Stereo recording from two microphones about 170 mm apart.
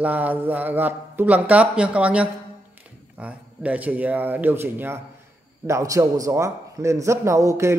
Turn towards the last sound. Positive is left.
turn(degrees=-15)  # may be behind; listen again after turning